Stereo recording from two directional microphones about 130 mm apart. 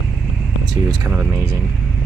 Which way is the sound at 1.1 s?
20° right (ahead or behind).